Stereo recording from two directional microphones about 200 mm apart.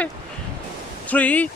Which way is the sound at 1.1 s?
5° left (ahead or behind).